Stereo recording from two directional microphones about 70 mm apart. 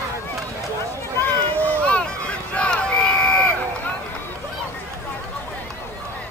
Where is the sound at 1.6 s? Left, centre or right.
Centre.